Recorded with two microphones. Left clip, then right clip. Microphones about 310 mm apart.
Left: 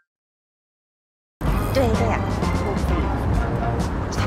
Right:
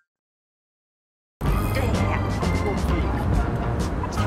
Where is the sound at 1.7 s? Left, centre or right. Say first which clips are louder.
Left 7 dB; centre.